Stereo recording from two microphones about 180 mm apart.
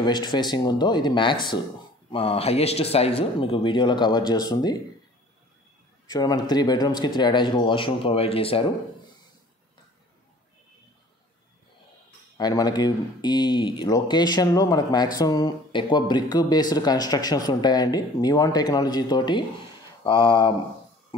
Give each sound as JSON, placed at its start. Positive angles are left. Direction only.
{"t": 0.0, "sound": "speech", "side_deg": 25}
{"t": 6.0, "sound": "speech", "side_deg": 20}
{"t": 12.4, "sound": "speech", "side_deg": 20}